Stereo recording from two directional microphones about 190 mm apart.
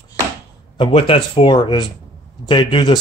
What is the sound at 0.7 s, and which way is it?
Speech, 25° left (ahead or behind).